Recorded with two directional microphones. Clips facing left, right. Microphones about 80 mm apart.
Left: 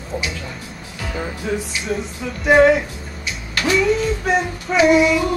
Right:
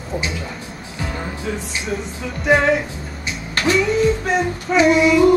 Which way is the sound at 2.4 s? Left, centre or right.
Centre.